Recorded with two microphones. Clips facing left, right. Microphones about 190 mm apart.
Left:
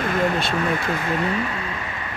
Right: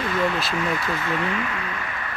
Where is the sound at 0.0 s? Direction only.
50° left (ahead or behind).